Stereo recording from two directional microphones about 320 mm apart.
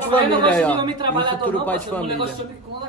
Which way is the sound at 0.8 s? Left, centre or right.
Centre.